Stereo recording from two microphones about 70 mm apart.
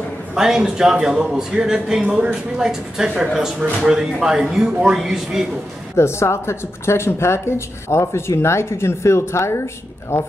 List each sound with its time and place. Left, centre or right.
0.3 s speech: centre
5.9 s speech: left